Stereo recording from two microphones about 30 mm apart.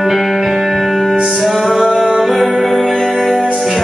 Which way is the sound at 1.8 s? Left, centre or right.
Centre.